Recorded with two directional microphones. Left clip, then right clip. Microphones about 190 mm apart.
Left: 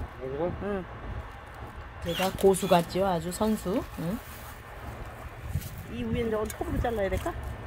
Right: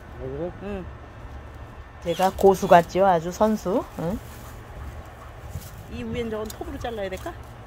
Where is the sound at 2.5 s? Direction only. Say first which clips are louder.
Right 9 dB; 10° right (ahead or behind).